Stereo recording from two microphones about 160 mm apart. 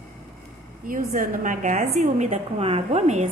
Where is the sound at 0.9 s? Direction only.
60° right (ahead or behind).